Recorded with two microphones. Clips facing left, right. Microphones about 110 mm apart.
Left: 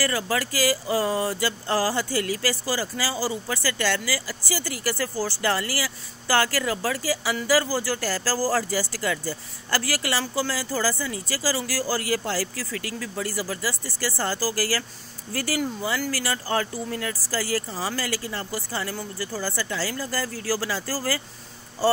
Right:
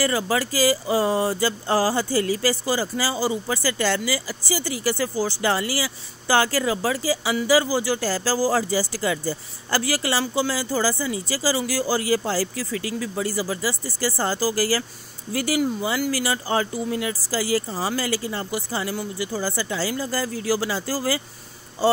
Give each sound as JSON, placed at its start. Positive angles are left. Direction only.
{"t": 0.0, "sound": "speech", "side_deg": -20}